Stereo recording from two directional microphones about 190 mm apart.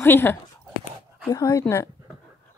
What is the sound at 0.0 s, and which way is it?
Speech, 10° left (ahead or behind).